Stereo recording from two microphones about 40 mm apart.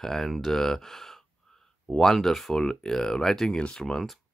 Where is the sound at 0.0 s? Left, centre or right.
Centre.